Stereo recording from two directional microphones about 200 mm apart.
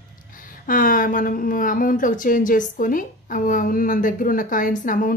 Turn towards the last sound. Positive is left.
turn(degrees=40)  # may be behind; listen again after turning